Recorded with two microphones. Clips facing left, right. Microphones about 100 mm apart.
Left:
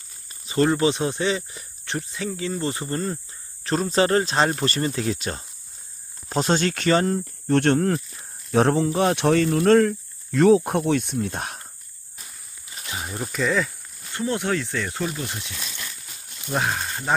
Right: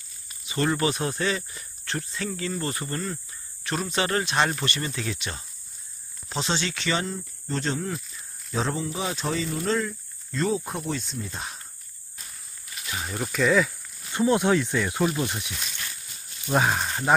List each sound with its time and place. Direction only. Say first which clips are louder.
0.3 s speech: left 5 dB; 35° left (ahead or behind)
3.6 s speech: left 6 dB; 35° left (ahead or behind)
7.4 s speech: left 10 dB; 65° left (ahead or behind)
12.9 s speech: even; 10° left (ahead or behind)
14.1 s speech: right 4 dB; 20° right (ahead or behind)
16.4 s speech: right 2 dB; 10° right (ahead or behind)